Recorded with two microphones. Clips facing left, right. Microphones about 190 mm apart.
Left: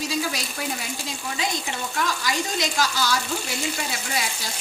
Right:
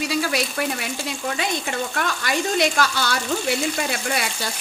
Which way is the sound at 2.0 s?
60° right (ahead or behind).